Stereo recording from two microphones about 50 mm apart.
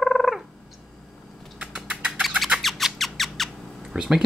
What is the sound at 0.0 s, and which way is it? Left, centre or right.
Turkey, centre.